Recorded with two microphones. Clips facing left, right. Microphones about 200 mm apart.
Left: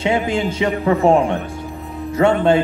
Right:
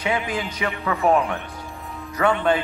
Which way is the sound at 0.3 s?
25° left (ahead or behind).